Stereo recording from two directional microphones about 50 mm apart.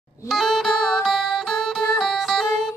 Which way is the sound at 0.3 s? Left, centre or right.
Centre.